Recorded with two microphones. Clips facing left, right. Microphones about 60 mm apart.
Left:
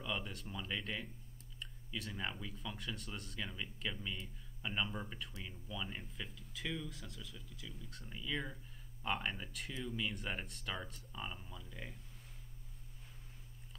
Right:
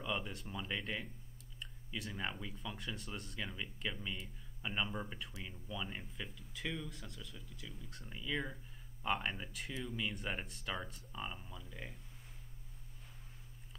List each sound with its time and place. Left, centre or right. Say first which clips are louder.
0.0 s speech: right 2 dB; centre